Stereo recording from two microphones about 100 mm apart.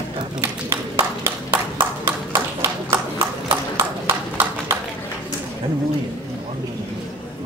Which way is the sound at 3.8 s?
25° right (ahead or behind).